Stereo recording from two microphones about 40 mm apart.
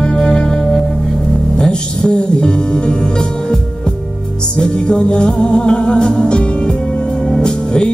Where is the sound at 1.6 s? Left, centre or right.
Left.